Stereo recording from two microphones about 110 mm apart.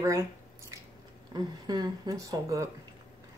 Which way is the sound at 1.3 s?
40° right (ahead or behind).